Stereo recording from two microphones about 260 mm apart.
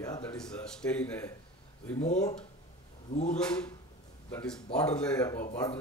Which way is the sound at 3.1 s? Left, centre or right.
Left.